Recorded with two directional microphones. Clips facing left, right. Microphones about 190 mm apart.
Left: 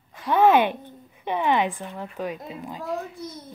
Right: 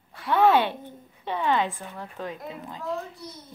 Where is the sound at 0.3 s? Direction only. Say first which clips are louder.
Left 2 dB; 15° left (ahead or behind).